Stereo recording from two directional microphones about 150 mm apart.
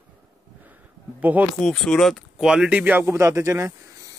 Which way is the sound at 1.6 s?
5° left (ahead or behind).